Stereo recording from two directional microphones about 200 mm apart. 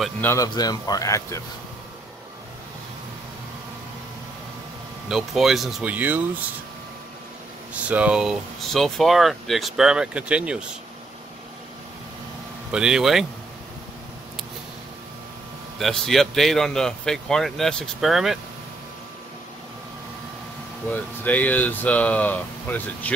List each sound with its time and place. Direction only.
0.0 s speech: 10° left (ahead or behind)
5.0 s speech: centre (ahead or behind)
7.9 s speech: 5° right (ahead or behind)
12.7 s speech: 5° right (ahead or behind)
15.8 s speech: centre (ahead or behind)
20.9 s speech: 10° left (ahead or behind)